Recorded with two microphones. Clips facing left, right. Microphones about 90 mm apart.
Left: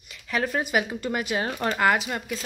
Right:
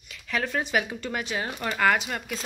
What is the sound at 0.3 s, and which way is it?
Speech, 10° left (ahead or behind).